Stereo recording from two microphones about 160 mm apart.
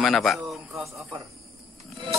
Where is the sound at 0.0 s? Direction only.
Centre (ahead or behind).